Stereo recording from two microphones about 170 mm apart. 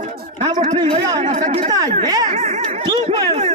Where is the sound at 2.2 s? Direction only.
40° right (ahead or behind).